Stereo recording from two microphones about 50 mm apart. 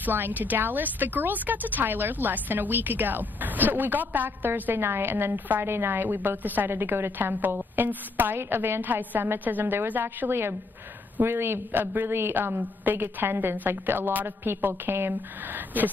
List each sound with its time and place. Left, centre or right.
0.0 s a woman's voice: right
6.7 s a woman's voice: right
15.1 s a woman's voice: right